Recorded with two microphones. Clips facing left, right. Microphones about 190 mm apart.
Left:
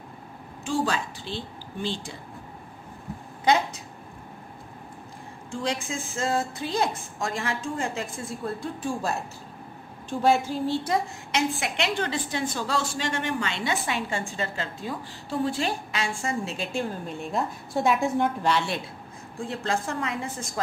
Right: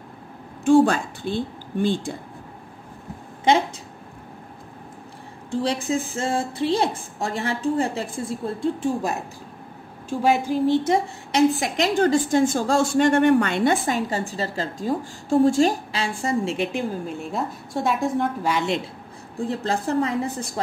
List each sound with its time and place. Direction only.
0.7 s a woman's voice: 55° right (ahead or behind)
5.5 s a woman's voice: 35° right (ahead or behind)
10.0 s speech: 15° right (ahead or behind)
11.3 s a woman's voice: 40° right (ahead or behind)
17.0 s a woman's voice: 5° right (ahead or behind)
18.5 s speech: 15° right (ahead or behind)
19.3 s a woman's voice: 35° right (ahead or behind)